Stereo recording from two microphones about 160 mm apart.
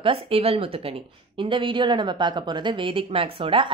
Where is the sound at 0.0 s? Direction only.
35° right (ahead or behind).